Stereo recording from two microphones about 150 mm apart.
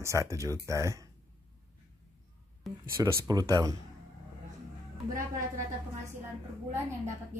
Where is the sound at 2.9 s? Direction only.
20° right (ahead or behind).